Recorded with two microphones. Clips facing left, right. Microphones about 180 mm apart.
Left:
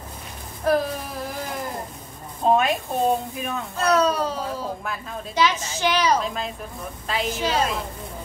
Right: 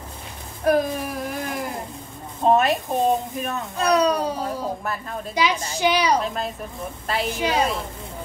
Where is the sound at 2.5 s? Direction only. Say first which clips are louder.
Right 1 dB; centre (ahead or behind).